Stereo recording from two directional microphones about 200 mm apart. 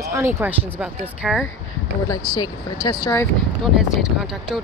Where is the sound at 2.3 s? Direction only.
20° left (ahead or behind).